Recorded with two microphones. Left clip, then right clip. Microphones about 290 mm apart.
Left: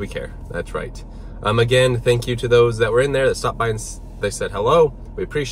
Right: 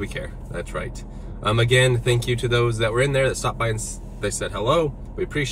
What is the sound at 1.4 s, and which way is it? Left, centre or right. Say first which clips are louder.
Speech: left 3 dB; centre.